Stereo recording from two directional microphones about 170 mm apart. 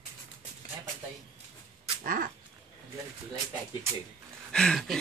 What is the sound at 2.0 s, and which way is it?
Dog, 55° right (ahead or behind).